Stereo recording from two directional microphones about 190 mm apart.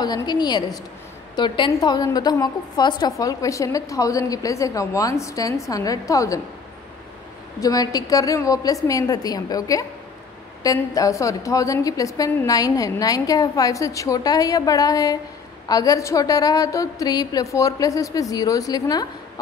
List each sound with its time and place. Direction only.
0.0 s a woman's voice: 20° left (ahead or behind)
7.6 s a woman's voice: 20° left (ahead or behind)